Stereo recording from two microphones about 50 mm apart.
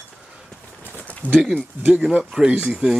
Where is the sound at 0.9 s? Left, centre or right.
Left.